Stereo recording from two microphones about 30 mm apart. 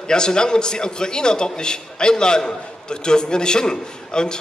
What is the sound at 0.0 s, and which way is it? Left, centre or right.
A man's voice, left.